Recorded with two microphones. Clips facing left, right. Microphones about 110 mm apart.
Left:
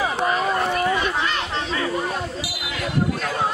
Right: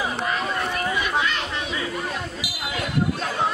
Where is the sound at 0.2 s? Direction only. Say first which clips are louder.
Left 4 dB; 35° left (ahead or behind).